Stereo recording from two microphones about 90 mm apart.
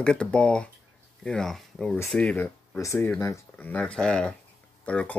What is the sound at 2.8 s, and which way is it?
Speech, 35° left (ahead or behind).